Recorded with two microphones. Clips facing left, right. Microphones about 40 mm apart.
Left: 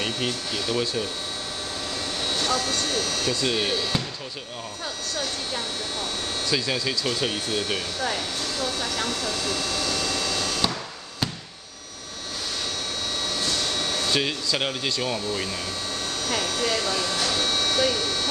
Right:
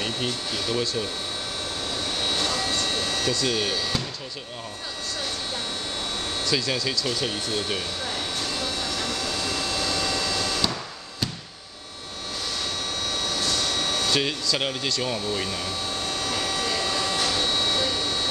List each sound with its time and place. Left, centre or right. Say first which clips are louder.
0.0 s speech: left 1 dB; centre
2.2 s vehicle: left 2 dB; centre
3.3 s speech: left 1 dB; centre
6.4 s speech: even; centre
9.3 s vehicle: even; centre
13.3 s a sound: right 1 dB; centre
15.0 s speech: even; centre
16.3 s vehicle: left 3 dB; centre